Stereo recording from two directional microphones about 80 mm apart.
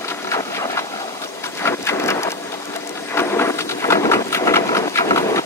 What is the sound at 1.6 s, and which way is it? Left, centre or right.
Wood, left.